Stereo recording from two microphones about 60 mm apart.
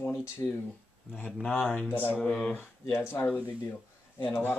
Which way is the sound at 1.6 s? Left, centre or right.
Left.